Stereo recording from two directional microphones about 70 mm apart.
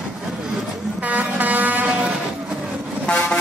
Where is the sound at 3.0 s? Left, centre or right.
Centre.